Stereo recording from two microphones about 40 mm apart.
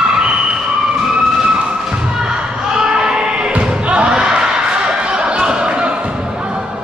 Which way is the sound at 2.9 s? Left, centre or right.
Centre.